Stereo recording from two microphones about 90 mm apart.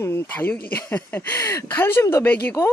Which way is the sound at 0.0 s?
20° left (ahead or behind).